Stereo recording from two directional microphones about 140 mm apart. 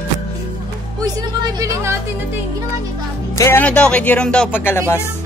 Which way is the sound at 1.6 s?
20° right (ahead or behind).